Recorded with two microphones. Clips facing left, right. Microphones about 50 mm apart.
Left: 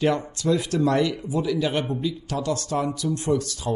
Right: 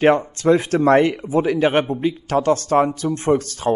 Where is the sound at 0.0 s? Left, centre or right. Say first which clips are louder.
Right 7 dB; right.